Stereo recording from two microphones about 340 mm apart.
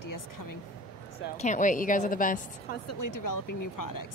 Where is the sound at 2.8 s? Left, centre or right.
Left.